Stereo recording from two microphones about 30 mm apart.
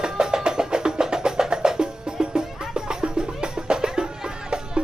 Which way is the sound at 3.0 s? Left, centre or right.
Right.